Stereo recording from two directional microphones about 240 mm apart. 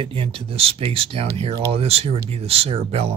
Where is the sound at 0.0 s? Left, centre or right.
Right.